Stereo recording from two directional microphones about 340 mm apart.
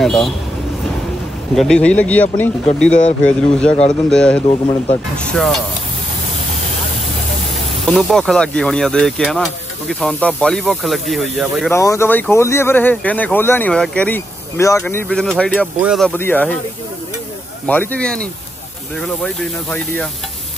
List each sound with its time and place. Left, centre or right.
0.0 s speech: centre
1.5 s speech: centre
4.5 s speech: centre
5.1 s speech: centre
7.9 s speech: centre
17.6 s speech: centre